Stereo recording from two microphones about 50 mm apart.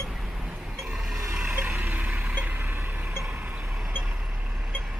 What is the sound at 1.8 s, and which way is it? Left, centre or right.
Vehicle, right.